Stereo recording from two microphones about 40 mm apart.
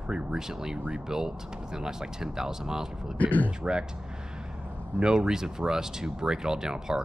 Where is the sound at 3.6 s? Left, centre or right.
Centre.